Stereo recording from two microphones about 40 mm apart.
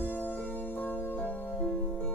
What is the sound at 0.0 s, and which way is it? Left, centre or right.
Music, left.